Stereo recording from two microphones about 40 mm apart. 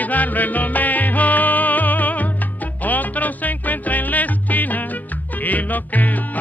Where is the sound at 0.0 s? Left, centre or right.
Left.